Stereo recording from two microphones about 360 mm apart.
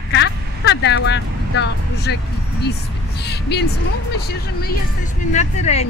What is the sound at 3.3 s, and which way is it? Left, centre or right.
Speech, left.